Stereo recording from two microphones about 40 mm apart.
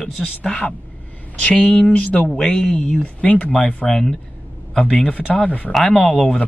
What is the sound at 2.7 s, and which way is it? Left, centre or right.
Speech, left.